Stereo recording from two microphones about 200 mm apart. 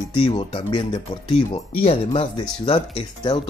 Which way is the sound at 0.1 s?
25° left (ahead or behind).